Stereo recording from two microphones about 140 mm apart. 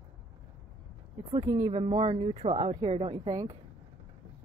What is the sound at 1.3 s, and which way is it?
Speech, 40° right (ahead or behind).